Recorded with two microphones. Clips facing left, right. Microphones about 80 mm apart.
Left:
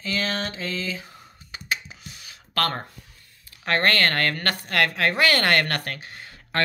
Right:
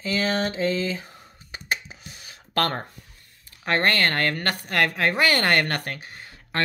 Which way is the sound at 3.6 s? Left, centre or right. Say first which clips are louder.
Even; centre.